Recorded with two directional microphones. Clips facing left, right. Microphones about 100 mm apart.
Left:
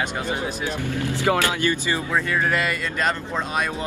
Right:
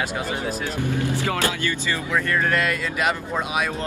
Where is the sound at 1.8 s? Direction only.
20° left (ahead or behind).